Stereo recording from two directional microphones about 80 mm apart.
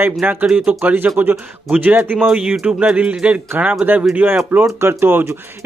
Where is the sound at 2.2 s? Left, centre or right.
Centre.